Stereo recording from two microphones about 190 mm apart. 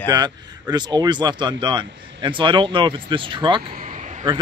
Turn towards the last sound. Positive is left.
turn(degrees=-40)  # may be behind; listen again after turning